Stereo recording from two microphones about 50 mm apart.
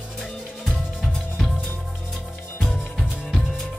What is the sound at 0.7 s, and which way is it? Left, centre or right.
Drum, centre.